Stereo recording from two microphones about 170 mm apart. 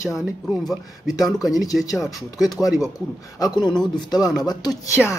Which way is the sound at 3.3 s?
25° left (ahead or behind).